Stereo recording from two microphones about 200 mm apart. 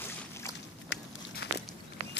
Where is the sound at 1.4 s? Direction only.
55° left (ahead or behind).